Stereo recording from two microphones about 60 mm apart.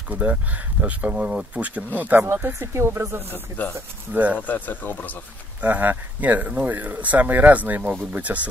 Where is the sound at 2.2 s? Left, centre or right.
Right.